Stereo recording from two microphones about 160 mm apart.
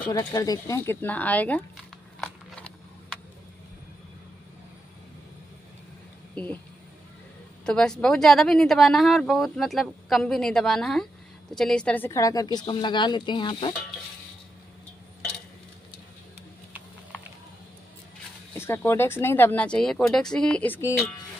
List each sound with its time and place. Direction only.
0.1 s speech: 20° left (ahead or behind)
2.1 s a sound: centre (ahead or behind)
6.3 s speech: 10° left (ahead or behind)
7.6 s speech: 5° left (ahead or behind); by 13.7 s 30° left (ahead or behind)
18.5 s speech: 15° left (ahead or behind)